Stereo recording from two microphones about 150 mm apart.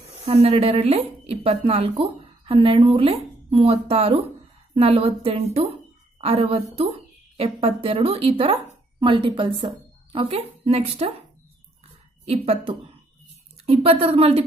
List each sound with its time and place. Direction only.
0.3 s speech: 45° right (ahead or behind)
12.3 s speech: 40° right (ahead or behind)